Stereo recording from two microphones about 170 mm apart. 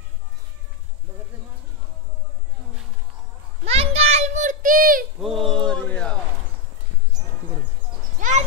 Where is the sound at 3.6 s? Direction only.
35° right (ahead or behind); by 5.0 s 55° right (ahead or behind).